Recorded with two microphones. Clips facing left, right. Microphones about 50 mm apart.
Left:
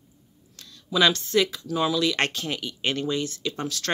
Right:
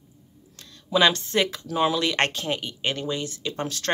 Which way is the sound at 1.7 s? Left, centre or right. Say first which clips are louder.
Right 1 dB; right.